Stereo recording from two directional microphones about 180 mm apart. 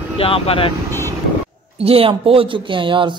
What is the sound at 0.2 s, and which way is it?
Speech, 30° left (ahead or behind).